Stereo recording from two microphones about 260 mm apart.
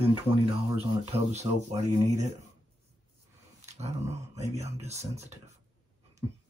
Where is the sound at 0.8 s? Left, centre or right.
Right.